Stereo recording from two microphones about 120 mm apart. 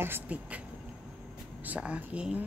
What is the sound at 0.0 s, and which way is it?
Speech, 15° right (ahead or behind).